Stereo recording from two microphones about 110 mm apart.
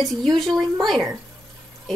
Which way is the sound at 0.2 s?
Centre (ahead or behind).